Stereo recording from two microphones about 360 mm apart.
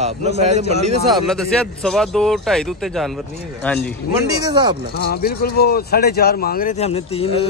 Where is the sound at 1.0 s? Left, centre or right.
Centre.